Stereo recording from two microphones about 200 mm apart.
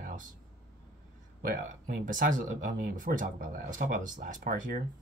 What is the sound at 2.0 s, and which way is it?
Speech, 40° right (ahead or behind).